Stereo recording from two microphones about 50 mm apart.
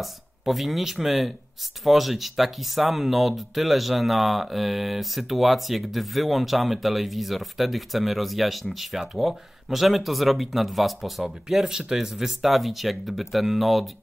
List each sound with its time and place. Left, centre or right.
0.0 s speech: centre